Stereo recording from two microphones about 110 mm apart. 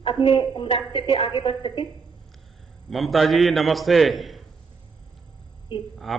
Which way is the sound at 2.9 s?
Centre (ahead or behind).